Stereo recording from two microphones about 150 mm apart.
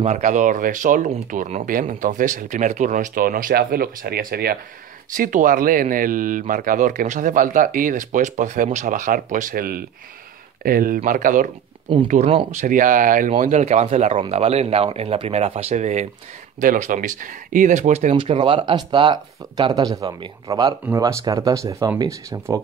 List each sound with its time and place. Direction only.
0.0 s speech: 50° right (ahead or behind); by 4.6 s 85° right
5.1 s speech: 65° right (ahead or behind)
11.1 s speech: 60° right (ahead or behind)
12.1 s speech: 45° right (ahead or behind)
12.5 s speech: 60° right (ahead or behind)
13.4 s speech: 50° right (ahead or behind)
18.1 s speech: 35° right (ahead or behind); by 22.6 s 20° right (ahead or behind)